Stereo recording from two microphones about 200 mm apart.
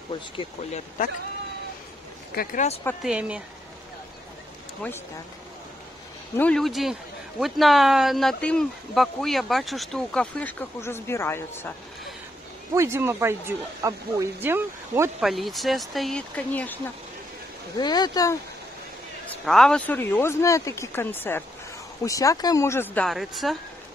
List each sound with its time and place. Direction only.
0.1 s speech: 25° left (ahead or behind)
2.3 s speech: 40° left (ahead or behind)
3.0 s speech: 5° right (ahead or behind)
6.3 s speech: 5° left (ahead or behind)
12.7 s speech: 15° right (ahead or behind)
15.2 s speech: centre (ahead or behind)
17.7 s speech: 20° left (ahead or behind)
19.4 s speech: centre (ahead or behind)
23.0 s speech: centre (ahead or behind)